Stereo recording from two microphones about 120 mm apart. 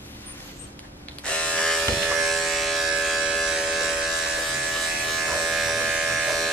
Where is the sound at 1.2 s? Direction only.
10° left (ahead or behind).